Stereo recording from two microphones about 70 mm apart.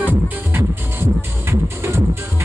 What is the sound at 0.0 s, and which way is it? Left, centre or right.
Music, right.